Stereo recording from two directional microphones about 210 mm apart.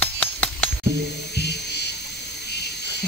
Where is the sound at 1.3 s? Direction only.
50° left (ahead or behind).